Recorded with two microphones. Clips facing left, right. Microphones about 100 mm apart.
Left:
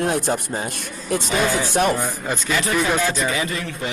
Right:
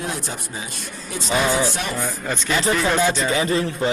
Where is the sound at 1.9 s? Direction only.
15° left (ahead or behind).